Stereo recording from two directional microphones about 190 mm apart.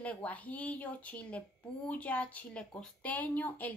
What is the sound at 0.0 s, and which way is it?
A woman's voice, 5° left (ahead or behind).